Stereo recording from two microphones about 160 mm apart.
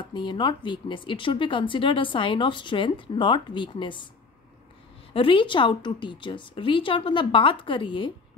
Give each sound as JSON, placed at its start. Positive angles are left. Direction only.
{"t": 0.0, "sound": "speech", "side_deg": 30}
{"t": 5.1, "sound": "speech", "side_deg": 30}